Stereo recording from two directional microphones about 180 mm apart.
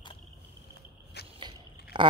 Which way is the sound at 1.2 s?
65° left (ahead or behind).